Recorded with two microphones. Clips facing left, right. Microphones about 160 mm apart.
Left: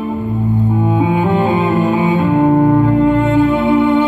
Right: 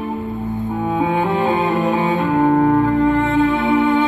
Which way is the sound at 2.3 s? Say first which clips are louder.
Left 3 dB; 20° left (ahead or behind).